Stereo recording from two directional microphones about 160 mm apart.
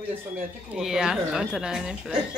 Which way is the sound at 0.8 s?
5° right (ahead or behind).